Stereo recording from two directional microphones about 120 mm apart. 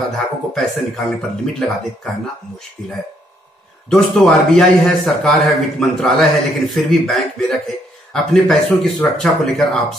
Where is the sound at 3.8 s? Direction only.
5° left (ahead or behind).